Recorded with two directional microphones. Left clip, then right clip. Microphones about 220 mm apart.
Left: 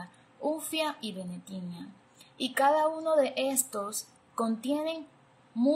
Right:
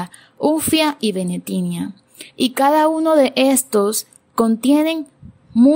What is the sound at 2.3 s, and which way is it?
A woman's voice, 45° right (ahead or behind).